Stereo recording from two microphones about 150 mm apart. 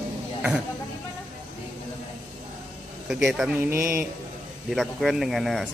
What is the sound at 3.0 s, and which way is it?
Speech, centre (ahead or behind).